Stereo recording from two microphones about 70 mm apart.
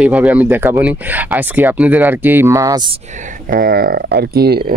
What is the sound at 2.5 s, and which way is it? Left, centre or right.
Speech, right.